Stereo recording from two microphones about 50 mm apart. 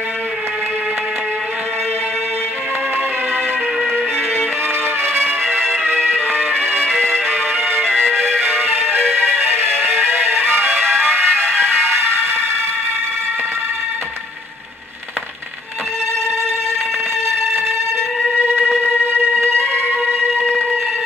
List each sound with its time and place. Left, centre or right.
9.5 s music: right
19.1 s music: left